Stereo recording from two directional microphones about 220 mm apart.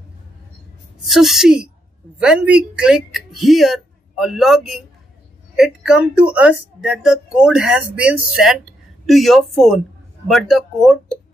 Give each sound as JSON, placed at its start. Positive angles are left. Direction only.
{"t": 1.0, "sound": "speech", "side_deg": 0}